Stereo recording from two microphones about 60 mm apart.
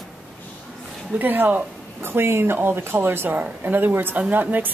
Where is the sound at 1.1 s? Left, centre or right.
Right.